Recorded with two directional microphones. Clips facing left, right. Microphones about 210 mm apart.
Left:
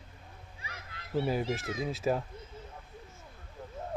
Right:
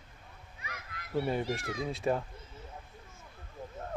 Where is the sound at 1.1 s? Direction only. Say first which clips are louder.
Left 1 dB; centre (ahead or behind).